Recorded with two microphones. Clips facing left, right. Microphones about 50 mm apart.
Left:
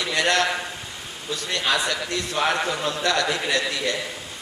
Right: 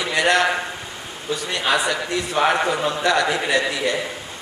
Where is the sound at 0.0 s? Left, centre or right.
Centre.